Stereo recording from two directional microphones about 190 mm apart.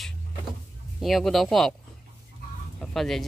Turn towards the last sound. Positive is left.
turn(degrees=0)  # may be behind; listen again after turning